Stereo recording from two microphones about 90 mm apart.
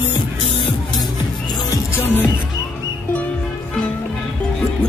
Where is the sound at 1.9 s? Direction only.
20° left (ahead or behind).